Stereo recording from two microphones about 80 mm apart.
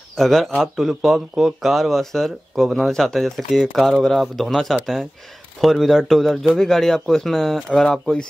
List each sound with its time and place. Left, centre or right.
0.1 s a man's voice: centre